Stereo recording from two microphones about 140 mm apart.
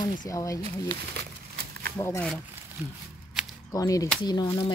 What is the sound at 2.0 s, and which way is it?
Speech, 15° left (ahead or behind).